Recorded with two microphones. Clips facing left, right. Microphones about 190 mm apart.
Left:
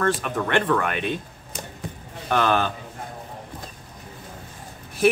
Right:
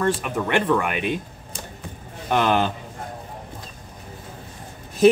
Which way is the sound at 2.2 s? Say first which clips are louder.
Right 1 dB; 15° right (ahead or behind).